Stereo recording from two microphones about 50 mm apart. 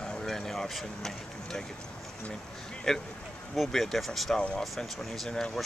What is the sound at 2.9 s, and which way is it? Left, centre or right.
Speech, centre.